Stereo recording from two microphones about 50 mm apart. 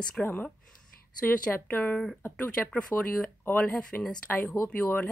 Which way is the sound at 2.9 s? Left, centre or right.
Left.